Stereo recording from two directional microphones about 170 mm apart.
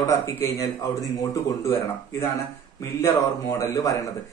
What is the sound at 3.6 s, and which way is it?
Speech, 20° left (ahead or behind).